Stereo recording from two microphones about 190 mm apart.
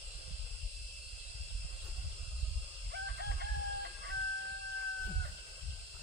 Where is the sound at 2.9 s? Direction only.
60° right (ahead or behind).